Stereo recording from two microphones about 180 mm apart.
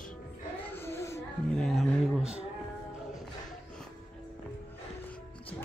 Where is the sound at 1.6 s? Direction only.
Centre (ahead or behind).